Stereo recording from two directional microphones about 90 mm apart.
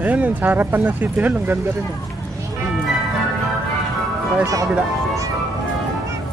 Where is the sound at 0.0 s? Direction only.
20° right (ahead or behind).